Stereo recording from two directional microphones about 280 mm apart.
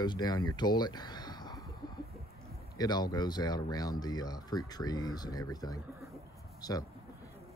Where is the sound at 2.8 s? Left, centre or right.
Centre.